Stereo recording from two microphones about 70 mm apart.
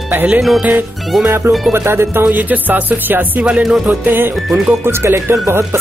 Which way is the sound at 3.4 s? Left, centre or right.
Centre.